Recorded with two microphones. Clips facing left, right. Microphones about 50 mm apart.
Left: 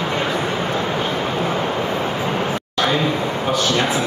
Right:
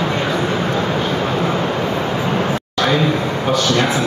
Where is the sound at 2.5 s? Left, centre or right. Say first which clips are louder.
Right 2 dB; centre.